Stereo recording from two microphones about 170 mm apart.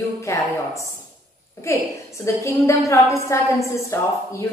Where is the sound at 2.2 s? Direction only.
15° left (ahead or behind).